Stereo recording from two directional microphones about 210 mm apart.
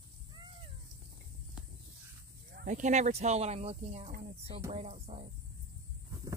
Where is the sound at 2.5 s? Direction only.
35° right (ahead or behind).